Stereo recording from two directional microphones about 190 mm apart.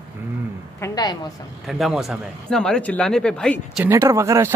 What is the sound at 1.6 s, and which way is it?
Speech, centre (ahead or behind).